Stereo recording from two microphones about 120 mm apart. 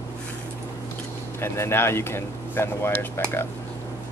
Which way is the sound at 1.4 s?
20° left (ahead or behind).